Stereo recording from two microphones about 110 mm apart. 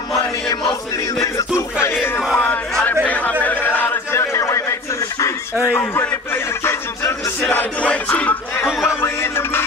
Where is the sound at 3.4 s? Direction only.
15° left (ahead or behind).